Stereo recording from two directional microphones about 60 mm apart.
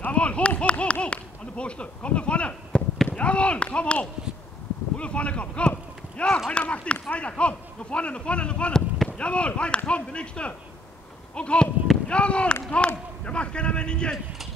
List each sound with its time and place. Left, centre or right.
0.0 s a sound: left
3.2 s speech: centre
6.2 s a man's voice: centre
6.5 s a man's voice: centre